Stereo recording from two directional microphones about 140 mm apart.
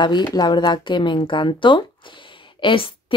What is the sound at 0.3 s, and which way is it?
Speech, 30° left (ahead or behind).